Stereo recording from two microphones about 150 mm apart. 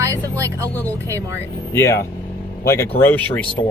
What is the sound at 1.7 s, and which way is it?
Speech, 20° left (ahead or behind).